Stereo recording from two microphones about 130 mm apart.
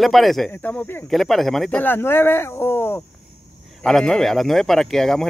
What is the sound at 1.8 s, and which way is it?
Speech, 15° left (ahead or behind).